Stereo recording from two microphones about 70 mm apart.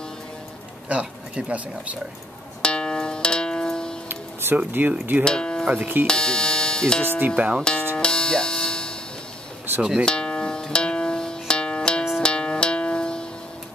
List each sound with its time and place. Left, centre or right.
0.8 s speech: centre
2.6 s music: centre
4.1 s music: right
4.8 s speech: right
5.2 s speech: centre
5.7 s speech: right
6.0 s speech: centre
7.2 s speech: right
7.9 s music: centre
9.8 s speech: centre
10.0 s music: centre